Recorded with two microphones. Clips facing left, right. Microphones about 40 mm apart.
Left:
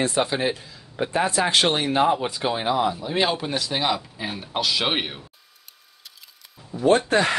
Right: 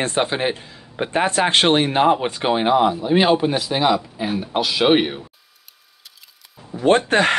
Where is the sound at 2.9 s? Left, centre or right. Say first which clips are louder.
Right 7 dB; right; by 5.2 s centre.